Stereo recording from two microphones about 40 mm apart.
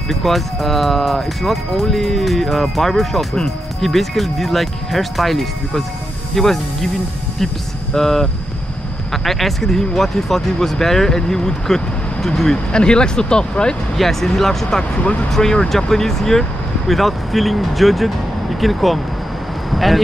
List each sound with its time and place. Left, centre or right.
0.1 s speech: centre
7.9 s speech: centre
12.7 s speech: left
13.9 s speech: centre
14.8 s speech: left
15.3 s speech: centre